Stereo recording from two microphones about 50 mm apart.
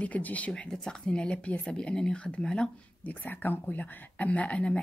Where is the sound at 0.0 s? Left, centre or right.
Left.